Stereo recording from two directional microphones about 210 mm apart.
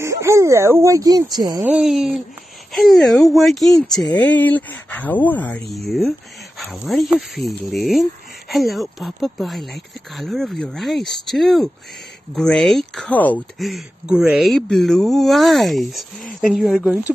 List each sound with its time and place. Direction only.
0.0 s speech: 15° right (ahead or behind)
1.6 s speech: 5° right (ahead or behind)